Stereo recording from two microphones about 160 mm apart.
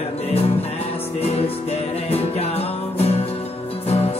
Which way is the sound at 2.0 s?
40° left (ahead or behind).